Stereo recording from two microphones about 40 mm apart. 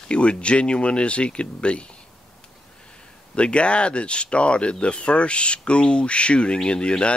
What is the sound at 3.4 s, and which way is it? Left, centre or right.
Speech, left.